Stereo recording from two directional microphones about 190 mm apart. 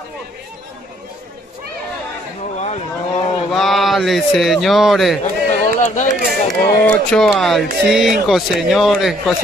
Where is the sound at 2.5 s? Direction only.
35° left (ahead or behind).